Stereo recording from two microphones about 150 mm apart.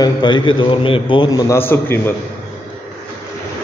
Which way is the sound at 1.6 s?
15° left (ahead or behind).